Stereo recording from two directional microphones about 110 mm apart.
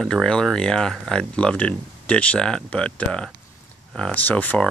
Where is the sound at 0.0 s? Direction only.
5° left (ahead or behind).